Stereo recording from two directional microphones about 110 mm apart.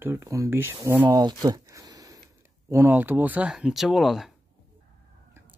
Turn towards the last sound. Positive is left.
turn(degrees=0)  # may be behind; listen again after turning